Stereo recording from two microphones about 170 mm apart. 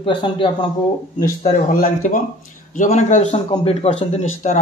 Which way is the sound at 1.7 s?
55° left (ahead or behind).